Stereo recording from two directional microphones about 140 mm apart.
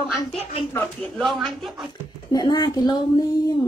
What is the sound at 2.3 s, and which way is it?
Speech, 30° left (ahead or behind).